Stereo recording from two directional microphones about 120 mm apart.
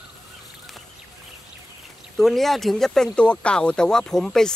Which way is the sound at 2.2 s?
Centre (ahead or behind).